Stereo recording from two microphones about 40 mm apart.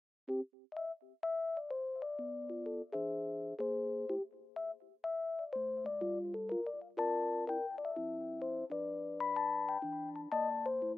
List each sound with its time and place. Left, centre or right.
0.3 s keyboard: centre